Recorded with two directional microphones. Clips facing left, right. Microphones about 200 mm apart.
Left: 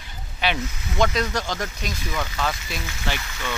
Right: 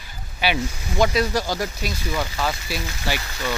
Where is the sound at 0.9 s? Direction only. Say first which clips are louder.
Right 3 dB; 10° right (ahead or behind).